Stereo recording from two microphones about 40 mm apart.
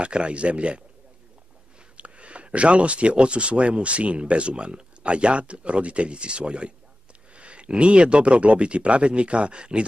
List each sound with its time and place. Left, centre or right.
0.0 s speech: right
2.0 s speech: right